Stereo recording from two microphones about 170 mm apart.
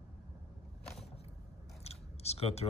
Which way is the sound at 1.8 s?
35° left (ahead or behind).